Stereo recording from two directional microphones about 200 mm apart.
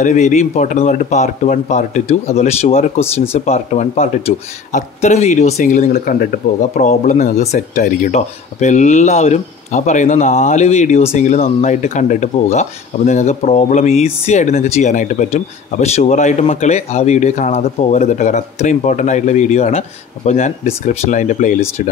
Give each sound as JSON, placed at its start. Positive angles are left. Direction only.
{"t": 0.0, "sound": "speech", "side_deg": 35}